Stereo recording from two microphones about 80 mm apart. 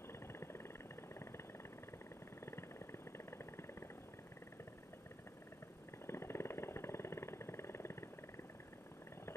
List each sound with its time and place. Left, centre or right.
0.3 s vehicle: left
2.4 s vehicle: left
6.0 s vehicle: left